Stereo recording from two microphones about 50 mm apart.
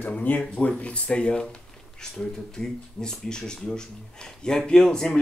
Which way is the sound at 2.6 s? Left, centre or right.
Centre.